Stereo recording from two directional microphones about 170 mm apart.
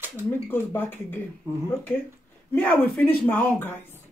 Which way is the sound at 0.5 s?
10° left (ahead or behind).